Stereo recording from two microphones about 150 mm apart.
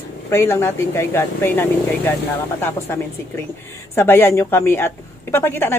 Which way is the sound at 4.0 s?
15° left (ahead or behind).